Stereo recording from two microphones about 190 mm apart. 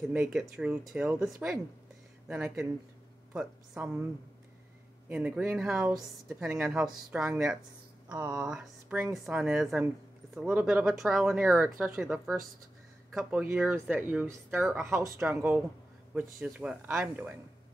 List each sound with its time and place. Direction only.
0.0 s a woman's voice: 5° right (ahead or behind)
5.0 s a woman's voice: 5° right (ahead or behind)
8.1 s speech: 15° right (ahead or behind)
8.5 s a woman's voice: 5° right (ahead or behind)